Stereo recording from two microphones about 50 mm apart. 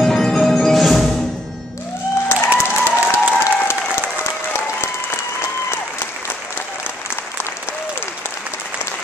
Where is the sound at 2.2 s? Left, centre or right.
Left.